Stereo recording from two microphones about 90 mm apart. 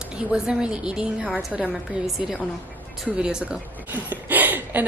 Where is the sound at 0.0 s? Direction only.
10° right (ahead or behind).